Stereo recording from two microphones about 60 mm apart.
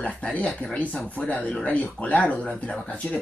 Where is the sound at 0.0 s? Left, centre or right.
Left.